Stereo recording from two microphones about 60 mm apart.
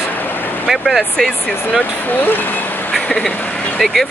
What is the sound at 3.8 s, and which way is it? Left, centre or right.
Speech, centre.